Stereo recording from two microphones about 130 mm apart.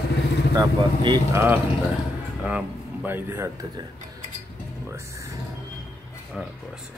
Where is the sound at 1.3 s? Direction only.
20° right (ahead or behind).